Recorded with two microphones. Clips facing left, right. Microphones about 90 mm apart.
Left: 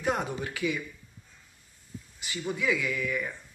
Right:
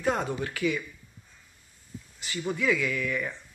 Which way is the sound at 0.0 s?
15° left (ahead or behind).